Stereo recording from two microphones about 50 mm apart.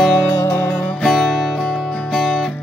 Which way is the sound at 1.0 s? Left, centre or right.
Centre.